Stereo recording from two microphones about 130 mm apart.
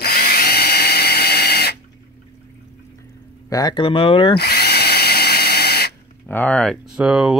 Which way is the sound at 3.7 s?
40° left (ahead or behind).